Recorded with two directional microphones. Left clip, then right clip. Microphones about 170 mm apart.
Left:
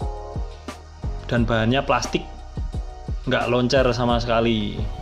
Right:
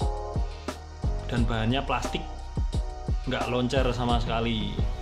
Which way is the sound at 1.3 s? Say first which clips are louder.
Left 8 dB; 25° left (ahead or behind).